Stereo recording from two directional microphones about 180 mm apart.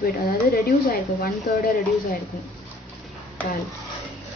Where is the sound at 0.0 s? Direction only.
55° left (ahead or behind).